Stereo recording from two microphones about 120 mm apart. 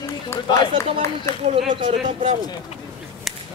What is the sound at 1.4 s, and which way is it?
Speech, 60° right (ahead or behind).